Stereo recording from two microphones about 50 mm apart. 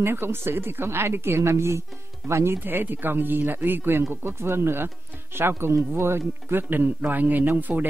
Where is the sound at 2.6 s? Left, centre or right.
Right.